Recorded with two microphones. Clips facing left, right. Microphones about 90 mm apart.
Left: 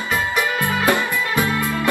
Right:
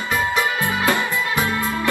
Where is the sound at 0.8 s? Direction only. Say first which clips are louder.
Left 2 dB; 15° left (ahead or behind).